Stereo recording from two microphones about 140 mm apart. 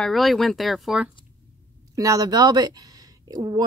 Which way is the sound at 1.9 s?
25° right (ahead or behind).